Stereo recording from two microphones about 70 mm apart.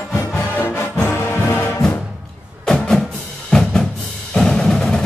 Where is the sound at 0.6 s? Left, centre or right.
Left.